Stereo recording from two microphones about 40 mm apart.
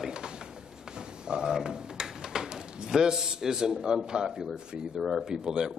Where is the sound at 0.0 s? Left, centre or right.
Centre.